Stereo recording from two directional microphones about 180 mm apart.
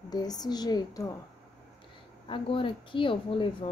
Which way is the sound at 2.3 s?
30° left (ahead or behind).